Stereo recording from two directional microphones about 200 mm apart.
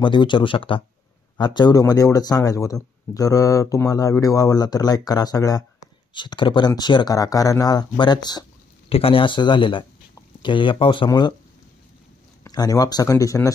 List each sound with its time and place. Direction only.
0.0 s speech: 25° left (ahead or behind)
12.4 s speech: 20° left (ahead or behind)